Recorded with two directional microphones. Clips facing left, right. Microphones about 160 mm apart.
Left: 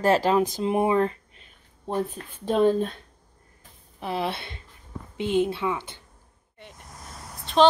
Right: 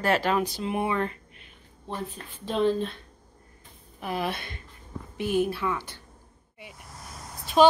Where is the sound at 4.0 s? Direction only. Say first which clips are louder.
Left 2 dB; 25° left (ahead or behind).